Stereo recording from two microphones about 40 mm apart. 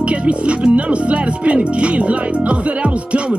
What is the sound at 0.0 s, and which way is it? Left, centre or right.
Speech, right.